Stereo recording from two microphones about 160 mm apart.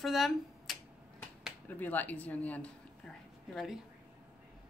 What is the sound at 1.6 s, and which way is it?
A woman's voice, 10° left (ahead or behind).